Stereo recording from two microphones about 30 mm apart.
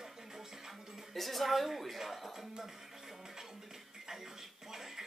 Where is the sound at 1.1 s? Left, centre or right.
Centre.